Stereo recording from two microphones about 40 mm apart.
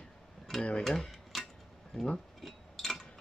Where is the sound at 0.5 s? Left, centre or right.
Centre.